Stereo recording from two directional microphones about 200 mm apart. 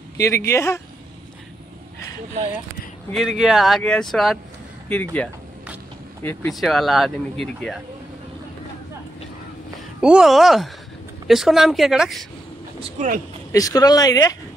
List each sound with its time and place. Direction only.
0.2 s speech: 15° left (ahead or behind)
3.1 s speech: centre (ahead or behind)
6.5 s speech: centre (ahead or behind)
9.9 s speech: 5° right (ahead or behind)
12.8 s speech: 40° right (ahead or behind)
13.5 s speech: 15° left (ahead or behind)